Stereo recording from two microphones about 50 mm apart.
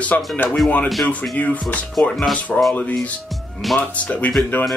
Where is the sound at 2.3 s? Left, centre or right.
Left.